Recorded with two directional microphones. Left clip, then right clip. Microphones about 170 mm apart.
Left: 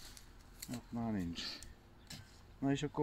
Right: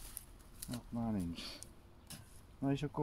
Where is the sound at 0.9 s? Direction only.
45° right (ahead or behind).